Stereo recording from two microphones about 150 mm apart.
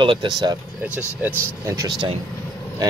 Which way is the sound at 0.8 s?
15° right (ahead or behind).